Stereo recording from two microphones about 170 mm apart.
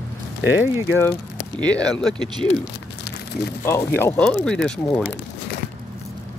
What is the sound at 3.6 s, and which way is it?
Speech, 15° left (ahead or behind).